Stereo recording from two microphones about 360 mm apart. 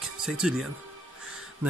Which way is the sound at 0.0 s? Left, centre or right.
Centre.